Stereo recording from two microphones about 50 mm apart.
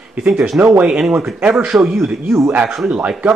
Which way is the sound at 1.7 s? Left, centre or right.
Right.